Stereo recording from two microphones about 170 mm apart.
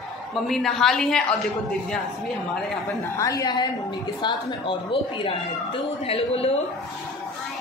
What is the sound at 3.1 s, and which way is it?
A woman's voice, 20° left (ahead or behind).